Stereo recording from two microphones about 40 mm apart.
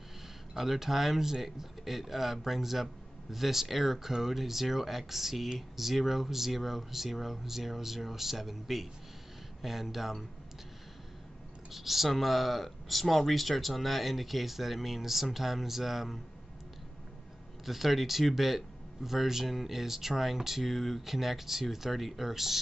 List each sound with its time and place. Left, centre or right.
0.6 s speech: centre
11.7 s speech: centre
17.6 s speech: centre